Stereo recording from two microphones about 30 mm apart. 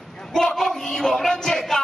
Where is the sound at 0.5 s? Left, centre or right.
Centre.